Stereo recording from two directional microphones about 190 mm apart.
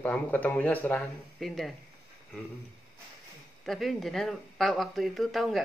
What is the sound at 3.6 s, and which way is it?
A man's voice, centre (ahead or behind).